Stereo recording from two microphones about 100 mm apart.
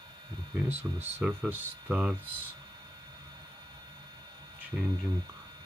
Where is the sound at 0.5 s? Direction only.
20° right (ahead or behind).